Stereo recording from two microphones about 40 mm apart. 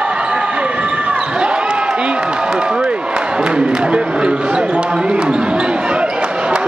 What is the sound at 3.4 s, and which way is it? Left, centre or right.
Basketball bounce, right.